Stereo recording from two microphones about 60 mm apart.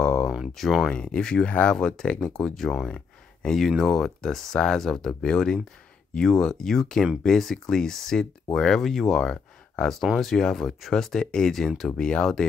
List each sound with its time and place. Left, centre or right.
0.0 s a sound: centre
0.6 s speech: centre
0.8 s speech: centre
9.2 s a sound: centre
10.1 s speech: centre
12.0 s speech: centre